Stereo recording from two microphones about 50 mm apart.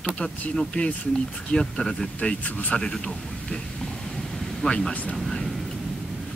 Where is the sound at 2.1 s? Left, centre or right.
Left.